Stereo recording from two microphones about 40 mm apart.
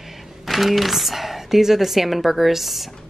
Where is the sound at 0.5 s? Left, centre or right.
Centre.